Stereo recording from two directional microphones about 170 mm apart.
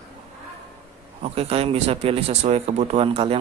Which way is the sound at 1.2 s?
35° right (ahead or behind).